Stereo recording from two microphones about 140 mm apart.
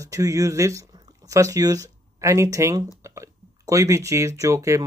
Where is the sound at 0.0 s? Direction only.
25° right (ahead or behind).